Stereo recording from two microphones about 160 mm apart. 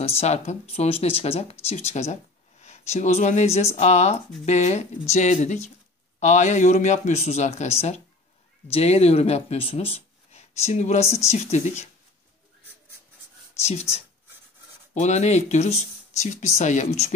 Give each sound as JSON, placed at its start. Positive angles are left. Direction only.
{"t": 0.0, "sound": "speech", "side_deg": 40}
{"t": 13.6, "sound": "speech", "side_deg": 40}